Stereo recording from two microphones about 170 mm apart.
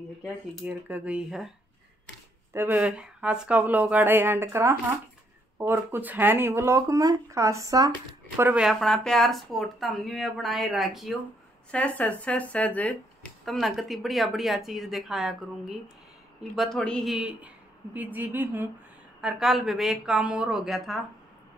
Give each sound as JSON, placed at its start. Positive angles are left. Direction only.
{"t": 0.7, "sound": "speech", "side_deg": -10}
{"t": 2.5, "sound": "speech", "side_deg": -10}
{"t": 8.4, "sound": "speech", "side_deg": -10}
{"t": 19.2, "sound": "speech", "side_deg": 0}